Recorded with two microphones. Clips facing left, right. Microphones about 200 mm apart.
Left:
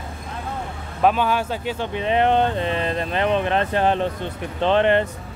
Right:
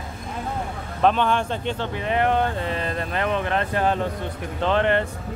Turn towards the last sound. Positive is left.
turn(degrees=20)  # may be behind; listen again after turning